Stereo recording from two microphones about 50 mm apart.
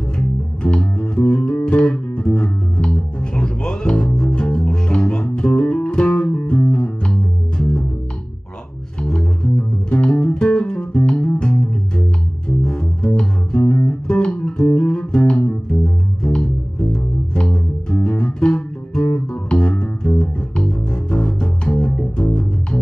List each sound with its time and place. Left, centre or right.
0.6 s music: centre
9.0 s music: centre